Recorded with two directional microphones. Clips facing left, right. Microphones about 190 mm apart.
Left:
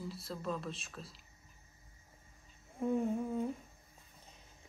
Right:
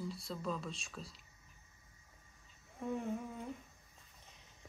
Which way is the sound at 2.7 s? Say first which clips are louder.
Left 6 dB; 30° left (ahead or behind).